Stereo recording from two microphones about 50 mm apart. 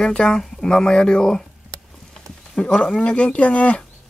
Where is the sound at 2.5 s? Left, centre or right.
Centre.